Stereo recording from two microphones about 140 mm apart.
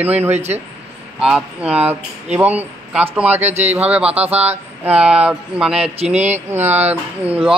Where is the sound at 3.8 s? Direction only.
10° right (ahead or behind).